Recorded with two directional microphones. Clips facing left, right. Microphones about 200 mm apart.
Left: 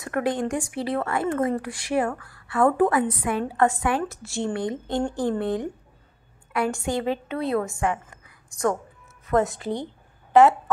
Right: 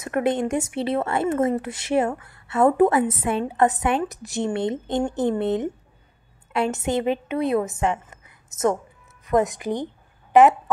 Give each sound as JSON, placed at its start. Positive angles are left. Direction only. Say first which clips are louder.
{"t": 0.0, "sound": "a woman's voice", "louder": "right 3 dB", "side_deg": -20}